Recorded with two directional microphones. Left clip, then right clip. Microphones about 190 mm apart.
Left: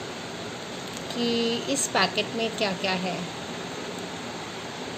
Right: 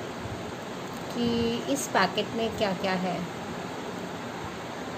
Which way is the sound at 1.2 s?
Centre (ahead or behind).